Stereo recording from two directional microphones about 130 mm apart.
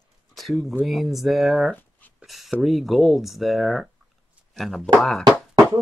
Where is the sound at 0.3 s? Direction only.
Centre (ahead or behind).